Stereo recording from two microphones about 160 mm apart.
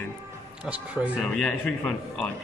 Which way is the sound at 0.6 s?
5° right (ahead or behind).